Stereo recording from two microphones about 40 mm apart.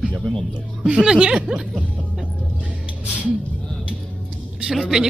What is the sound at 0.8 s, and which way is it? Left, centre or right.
Speech, right.